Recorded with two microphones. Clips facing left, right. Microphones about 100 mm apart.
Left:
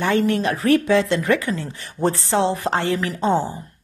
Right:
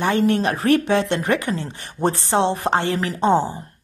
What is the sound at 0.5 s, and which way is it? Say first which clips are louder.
Speech: left 1 dB; 40° right (ahead or behind).